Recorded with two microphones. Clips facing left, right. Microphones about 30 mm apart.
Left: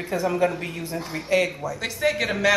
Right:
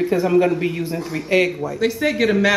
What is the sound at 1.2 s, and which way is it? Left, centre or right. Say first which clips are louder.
Speech: right 4 dB; centre.